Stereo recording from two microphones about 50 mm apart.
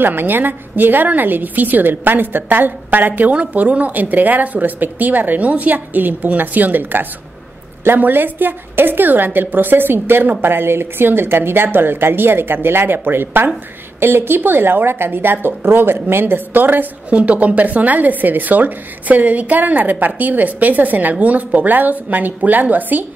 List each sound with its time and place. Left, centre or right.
0.0 s a woman's voice: right
17.1 s a woman's voice: right